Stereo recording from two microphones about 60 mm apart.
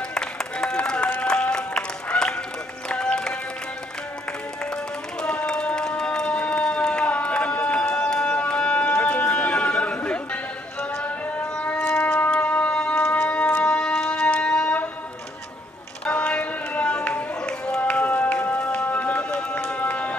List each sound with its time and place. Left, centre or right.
0.1 s a sound: centre
1.2 s run: centre
5.2 s run: centre
11.9 s wind instrument: left
13.7 s music: centre
16.1 s a sound: centre